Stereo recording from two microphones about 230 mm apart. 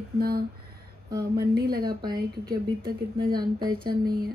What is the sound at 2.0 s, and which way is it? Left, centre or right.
Speech, centre.